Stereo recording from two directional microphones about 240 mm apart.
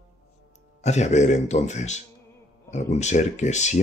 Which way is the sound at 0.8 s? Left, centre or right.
Left.